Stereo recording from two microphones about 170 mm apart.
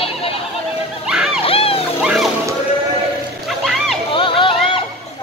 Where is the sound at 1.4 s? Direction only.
35° left (ahead or behind).